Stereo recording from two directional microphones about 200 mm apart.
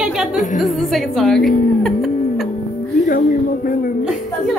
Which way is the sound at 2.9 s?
45° left (ahead or behind).